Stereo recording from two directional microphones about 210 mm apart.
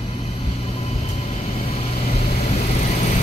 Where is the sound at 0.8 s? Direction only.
30° left (ahead or behind).